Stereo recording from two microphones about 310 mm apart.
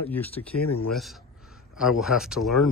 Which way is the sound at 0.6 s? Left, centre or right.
Left.